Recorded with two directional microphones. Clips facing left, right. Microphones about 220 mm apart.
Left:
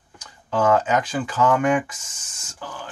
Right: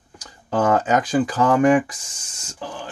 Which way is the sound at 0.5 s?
35° right (ahead or behind).